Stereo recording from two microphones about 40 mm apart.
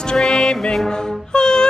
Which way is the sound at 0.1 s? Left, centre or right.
Centre.